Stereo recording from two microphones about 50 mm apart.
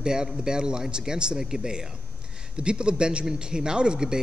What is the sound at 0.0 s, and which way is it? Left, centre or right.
A man's voice, centre.